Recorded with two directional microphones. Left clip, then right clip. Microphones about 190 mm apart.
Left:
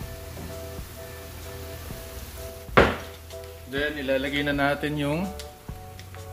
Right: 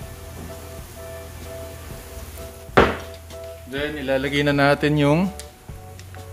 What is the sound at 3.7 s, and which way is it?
Speech, 60° right (ahead or behind).